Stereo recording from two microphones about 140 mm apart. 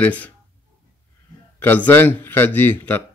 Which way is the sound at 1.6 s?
15° left (ahead or behind).